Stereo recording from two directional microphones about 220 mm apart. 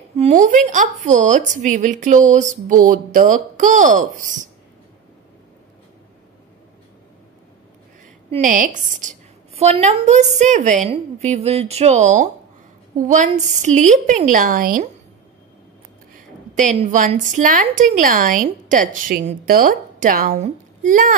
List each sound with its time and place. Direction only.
0.2 s a woman's voice: 35° right (ahead or behind)
8.3 s a woman's voice: 35° right (ahead or behind)
16.2 s a woman's voice: 35° right (ahead or behind)